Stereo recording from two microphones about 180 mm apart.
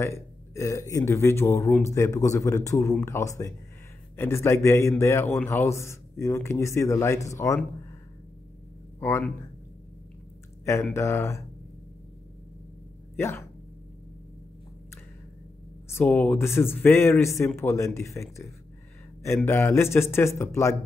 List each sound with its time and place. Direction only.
0.0 s a man's voice: 15° left (ahead or behind)
9.0 s a man's voice: 15° left (ahead or behind)
10.6 s a man's voice: 15° left (ahead or behind)
13.1 s speech: 15° left (ahead or behind)
15.9 s a man's voice: 10° left (ahead or behind)